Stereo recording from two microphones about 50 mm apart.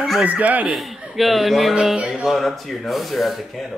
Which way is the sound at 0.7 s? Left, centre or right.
Centre.